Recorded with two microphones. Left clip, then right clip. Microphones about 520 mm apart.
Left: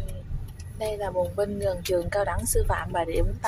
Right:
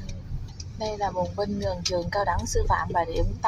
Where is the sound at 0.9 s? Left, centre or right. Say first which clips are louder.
Even; left.